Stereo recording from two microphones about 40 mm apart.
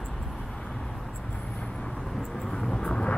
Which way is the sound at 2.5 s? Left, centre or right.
Centre.